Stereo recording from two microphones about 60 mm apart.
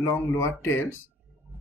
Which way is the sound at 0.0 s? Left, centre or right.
Left.